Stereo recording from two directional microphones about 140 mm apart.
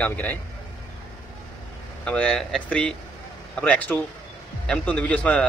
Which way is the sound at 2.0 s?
10° left (ahead or behind).